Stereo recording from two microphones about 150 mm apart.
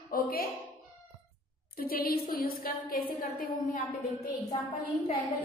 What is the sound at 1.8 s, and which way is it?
A woman's voice, 80° left.